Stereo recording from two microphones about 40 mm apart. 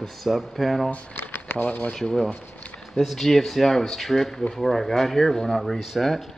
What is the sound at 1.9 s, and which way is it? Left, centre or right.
Speech, centre.